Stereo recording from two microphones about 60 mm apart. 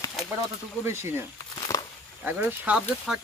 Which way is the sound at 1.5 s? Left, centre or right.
Left.